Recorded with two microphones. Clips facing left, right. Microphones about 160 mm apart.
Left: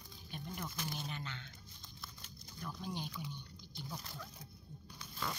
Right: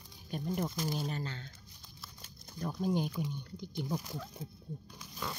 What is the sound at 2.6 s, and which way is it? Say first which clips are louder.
Speech: right 11 dB; 45° right (ahead or behind).